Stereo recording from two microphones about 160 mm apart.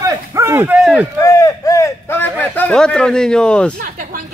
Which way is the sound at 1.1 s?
20° left (ahead or behind).